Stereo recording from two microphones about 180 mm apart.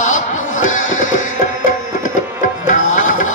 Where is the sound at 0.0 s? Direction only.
45° left (ahead or behind).